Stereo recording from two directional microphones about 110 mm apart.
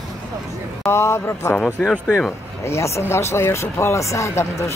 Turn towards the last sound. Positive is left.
turn(degrees=25)  # may be behind; listen again after turning